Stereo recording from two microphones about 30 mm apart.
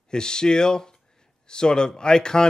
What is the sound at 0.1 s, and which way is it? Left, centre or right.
Speech, left.